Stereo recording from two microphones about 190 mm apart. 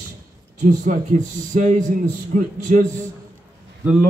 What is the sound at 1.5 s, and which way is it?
A man's voice, 40° right (ahead or behind).